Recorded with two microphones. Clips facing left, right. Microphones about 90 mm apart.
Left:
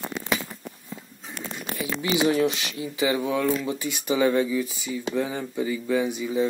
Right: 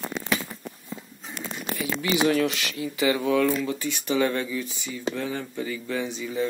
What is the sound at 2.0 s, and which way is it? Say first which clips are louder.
Speech: left 1 dB; 20° left (ahead or behind).